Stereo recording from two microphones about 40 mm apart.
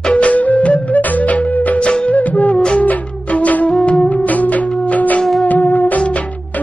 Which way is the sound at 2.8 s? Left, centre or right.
Left.